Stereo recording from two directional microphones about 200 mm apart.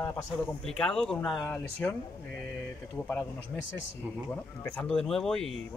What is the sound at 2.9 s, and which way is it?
Speech, 10° left (ahead or behind).